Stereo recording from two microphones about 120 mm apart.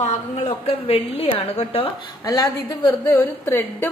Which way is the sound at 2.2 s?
30° left (ahead or behind).